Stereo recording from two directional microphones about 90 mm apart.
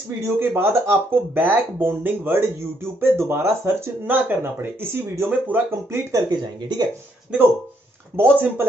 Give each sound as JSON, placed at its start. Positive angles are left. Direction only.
{"t": 0.2, "sound": "speech", "side_deg": -25}
{"t": 6.1, "sound": "speech", "side_deg": -50}
{"t": 8.2, "sound": "speech", "side_deg": -25}